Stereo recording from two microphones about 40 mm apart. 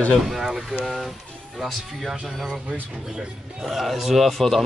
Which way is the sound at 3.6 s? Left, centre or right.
Centre.